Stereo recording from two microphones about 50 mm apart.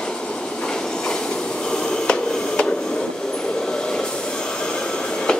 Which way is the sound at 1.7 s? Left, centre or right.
Centre.